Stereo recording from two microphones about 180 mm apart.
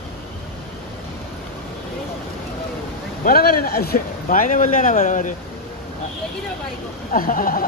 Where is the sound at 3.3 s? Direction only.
55° left (ahead or behind).